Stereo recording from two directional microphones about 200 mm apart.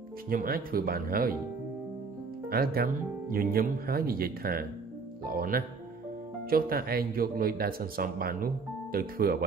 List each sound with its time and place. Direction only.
0.3 s speech: 45° right (ahead or behind)
2.5 s speech: 50° right (ahead or behind)